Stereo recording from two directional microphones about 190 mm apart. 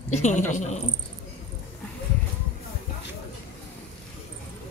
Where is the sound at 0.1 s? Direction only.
35° left (ahead or behind).